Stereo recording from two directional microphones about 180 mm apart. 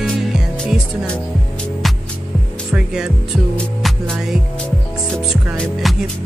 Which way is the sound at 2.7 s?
5° right (ahead or behind).